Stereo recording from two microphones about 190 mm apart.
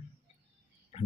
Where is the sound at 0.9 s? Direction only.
30° left (ahead or behind).